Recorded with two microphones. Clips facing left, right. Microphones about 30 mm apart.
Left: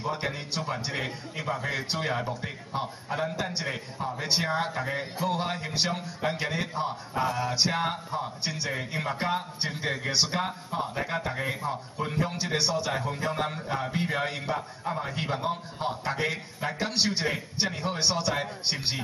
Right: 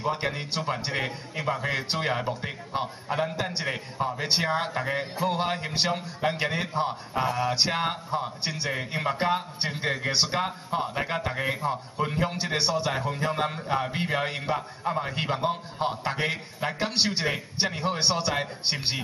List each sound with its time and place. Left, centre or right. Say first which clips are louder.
0.0 s a man's voice: right 3 dB; centre